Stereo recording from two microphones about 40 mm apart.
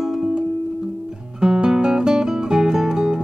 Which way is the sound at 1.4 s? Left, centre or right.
Centre.